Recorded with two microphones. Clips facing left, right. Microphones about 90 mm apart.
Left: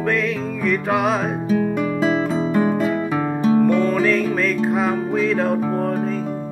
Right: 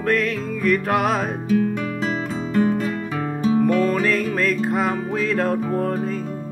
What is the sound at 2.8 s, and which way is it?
Music, 20° left (ahead or behind).